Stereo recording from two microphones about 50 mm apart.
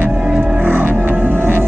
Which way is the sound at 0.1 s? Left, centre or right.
Centre.